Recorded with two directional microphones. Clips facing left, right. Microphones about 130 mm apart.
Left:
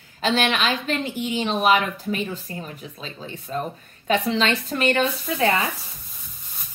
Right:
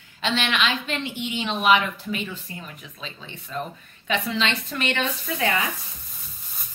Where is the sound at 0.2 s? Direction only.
40° left (ahead or behind).